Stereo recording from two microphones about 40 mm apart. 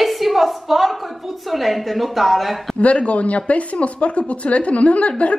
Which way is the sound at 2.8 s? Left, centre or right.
Left.